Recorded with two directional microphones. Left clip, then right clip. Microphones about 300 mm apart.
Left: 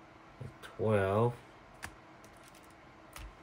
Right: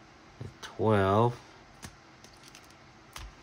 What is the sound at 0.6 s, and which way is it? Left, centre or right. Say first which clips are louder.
Speech: right 4 dB; right.